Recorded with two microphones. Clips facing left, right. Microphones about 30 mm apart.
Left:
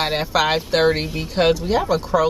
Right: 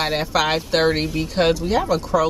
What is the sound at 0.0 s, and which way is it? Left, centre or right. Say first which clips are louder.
Speech: left 1 dB; centre.